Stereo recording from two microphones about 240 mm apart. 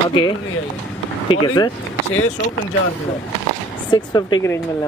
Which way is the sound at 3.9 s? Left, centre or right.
Centre.